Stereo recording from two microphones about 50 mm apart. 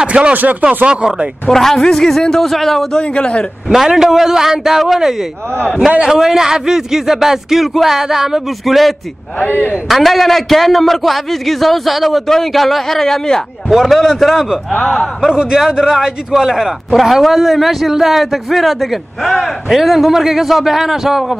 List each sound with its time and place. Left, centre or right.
0.0 s a sound: right
0.3 s speech: right
0.8 s speech: right
1.5 s speech: centre
3.0 s a man's voice: left
3.7 s a man's voice: centre
9.4 s speech: left
9.8 s a man's voice: centre